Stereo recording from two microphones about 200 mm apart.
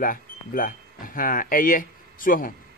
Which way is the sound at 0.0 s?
45° left (ahead or behind).